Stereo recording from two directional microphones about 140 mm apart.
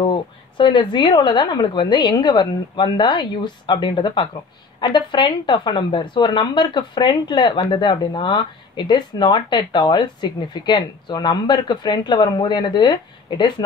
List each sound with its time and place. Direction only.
0.1 s speech: 35° left (ahead or behind)